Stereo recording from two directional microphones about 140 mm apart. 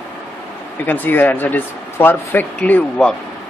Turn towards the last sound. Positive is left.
turn(degrees=10)  # may be behind; listen again after turning